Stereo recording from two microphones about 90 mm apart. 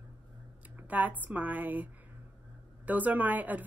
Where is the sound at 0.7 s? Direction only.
20° right (ahead or behind).